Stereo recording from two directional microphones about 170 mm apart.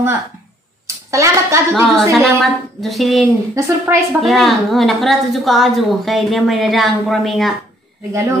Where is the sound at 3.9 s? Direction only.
15° right (ahead or behind).